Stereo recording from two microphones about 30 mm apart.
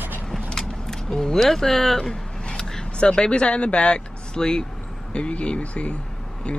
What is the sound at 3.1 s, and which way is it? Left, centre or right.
Speech, left.